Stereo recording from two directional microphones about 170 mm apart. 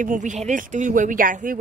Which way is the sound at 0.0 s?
50° right (ahead or behind).